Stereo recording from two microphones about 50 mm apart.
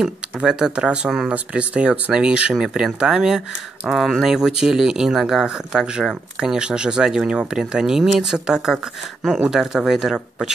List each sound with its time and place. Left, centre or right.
0.4 s speech: centre